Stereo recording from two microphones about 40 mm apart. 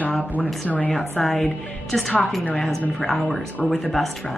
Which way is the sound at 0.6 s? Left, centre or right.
Left.